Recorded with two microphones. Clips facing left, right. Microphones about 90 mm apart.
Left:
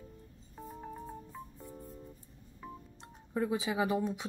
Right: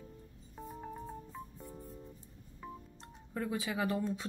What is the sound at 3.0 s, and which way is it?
Speech, 20° left (ahead or behind).